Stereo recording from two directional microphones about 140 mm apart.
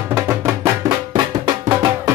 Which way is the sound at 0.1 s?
20° right (ahead or behind).